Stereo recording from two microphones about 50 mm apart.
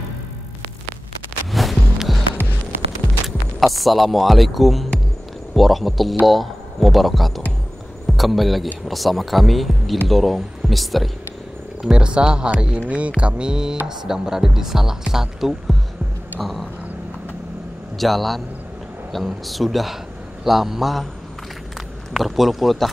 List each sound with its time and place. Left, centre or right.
1.5 s music: centre
3.3 s speech: centre
11.8 s speech: centre
16.3 s a sound: centre
17.9 s speech: centre
22.1 s speech: centre